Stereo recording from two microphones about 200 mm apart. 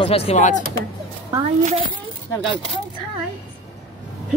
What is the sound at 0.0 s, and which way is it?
Speech, 30° left (ahead or behind).